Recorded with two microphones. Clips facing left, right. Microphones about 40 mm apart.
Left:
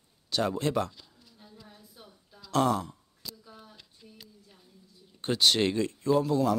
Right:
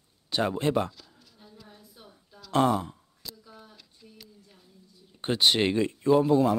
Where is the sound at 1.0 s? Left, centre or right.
Centre.